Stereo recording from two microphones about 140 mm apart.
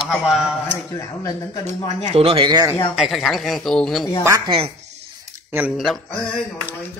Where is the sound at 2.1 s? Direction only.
40° right (ahead or behind).